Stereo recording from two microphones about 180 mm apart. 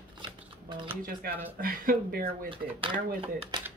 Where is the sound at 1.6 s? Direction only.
55° right (ahead or behind).